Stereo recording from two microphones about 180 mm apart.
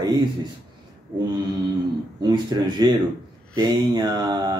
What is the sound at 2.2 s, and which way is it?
Speech, 20° right (ahead or behind).